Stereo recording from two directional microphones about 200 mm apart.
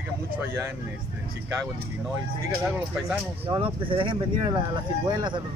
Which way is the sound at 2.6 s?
10° right (ahead or behind).